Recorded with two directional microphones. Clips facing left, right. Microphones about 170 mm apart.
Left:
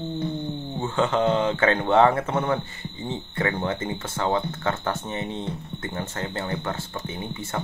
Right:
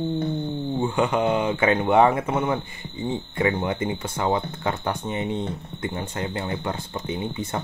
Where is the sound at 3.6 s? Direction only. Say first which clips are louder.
Right 2 dB; 15° right (ahead or behind).